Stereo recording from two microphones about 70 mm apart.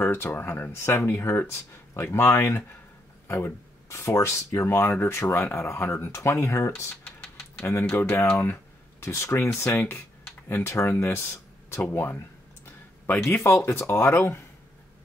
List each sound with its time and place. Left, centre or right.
0.0 s speech: left
3.3 s speech: left
3.9 s speech: left
6.2 s speech: left
7.7 s speech: left
9.0 s speech: left
12.6 s a sound: left
13.7 s speech: left